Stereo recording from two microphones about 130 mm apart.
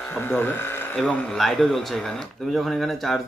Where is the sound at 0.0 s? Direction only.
15° left (ahead or behind).